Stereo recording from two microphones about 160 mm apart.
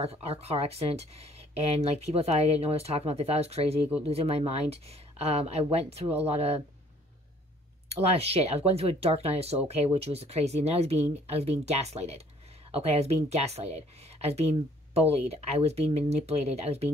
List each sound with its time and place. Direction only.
0.0 s speech: 40° right (ahead or behind)
8.2 s speech: 40° right (ahead or behind)